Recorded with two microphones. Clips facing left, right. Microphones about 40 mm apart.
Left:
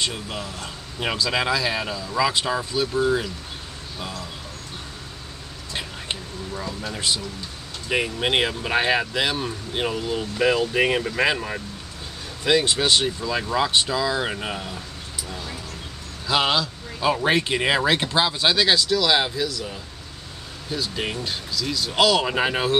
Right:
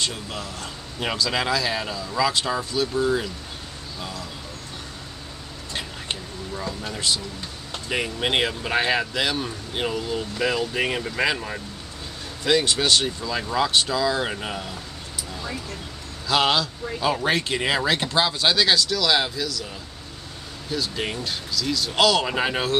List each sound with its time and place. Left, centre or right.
0.0 s speech: centre
5.7 s a sound: centre
6.9 s speech: centre
16.3 s speech: centre
20.7 s speech: centre